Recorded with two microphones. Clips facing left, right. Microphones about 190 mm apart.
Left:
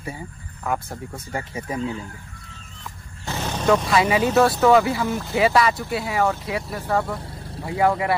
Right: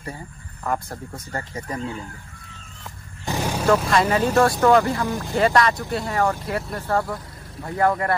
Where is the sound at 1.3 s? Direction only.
10° left (ahead or behind).